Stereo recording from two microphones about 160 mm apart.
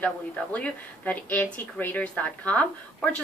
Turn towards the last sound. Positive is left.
turn(degrees=10)  # may be behind; listen again after turning